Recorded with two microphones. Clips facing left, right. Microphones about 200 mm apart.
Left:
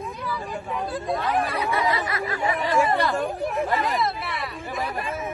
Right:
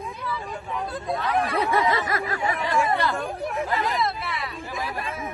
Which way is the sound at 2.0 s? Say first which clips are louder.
Right 1 dB; 45° right (ahead or behind).